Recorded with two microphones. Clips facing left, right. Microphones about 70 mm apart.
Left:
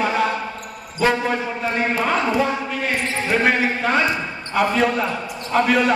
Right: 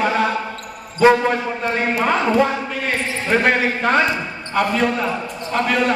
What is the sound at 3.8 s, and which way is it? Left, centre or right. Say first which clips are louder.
A man's voice: right 2 dB; centre.